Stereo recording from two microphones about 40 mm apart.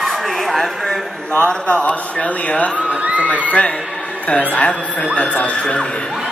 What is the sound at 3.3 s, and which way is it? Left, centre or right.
Speech, left.